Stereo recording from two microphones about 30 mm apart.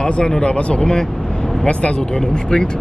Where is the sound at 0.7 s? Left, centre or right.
Left.